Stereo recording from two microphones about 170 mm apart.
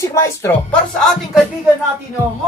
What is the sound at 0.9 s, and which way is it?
Speech, centre (ahead or behind).